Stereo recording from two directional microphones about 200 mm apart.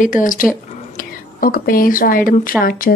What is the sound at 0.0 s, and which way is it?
A woman's voice, 40° left (ahead or behind).